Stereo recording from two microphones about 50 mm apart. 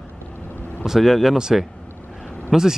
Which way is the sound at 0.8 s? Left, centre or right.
Centre.